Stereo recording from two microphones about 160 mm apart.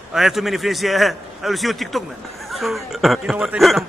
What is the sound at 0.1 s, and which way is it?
A man's voice, centre (ahead or behind).